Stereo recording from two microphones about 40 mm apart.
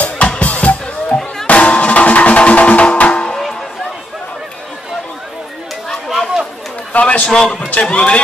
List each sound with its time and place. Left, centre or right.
0.4 s music: left
6.0 s chatter: centre
6.9 s a man's voice: left